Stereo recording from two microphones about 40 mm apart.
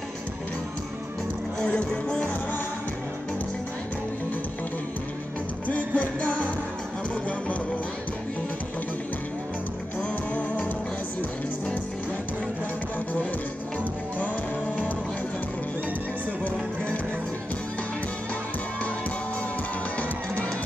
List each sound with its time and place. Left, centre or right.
5.7 s music: left